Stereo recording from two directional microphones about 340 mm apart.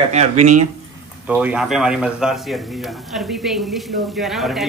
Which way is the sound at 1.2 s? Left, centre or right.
Centre.